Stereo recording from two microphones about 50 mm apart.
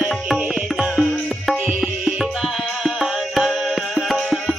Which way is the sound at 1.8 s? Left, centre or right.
Centre.